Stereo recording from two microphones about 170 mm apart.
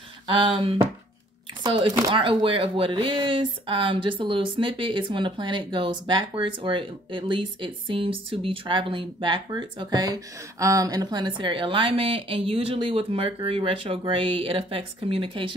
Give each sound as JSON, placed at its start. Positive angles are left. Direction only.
{"t": 0.3, "sound": "speech", "side_deg": -30}